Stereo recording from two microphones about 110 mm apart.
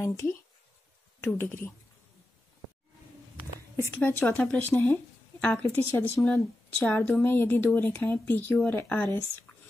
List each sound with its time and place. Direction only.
0.0 s speech: 30° left (ahead or behind)
3.8 s speech: 20° left (ahead or behind)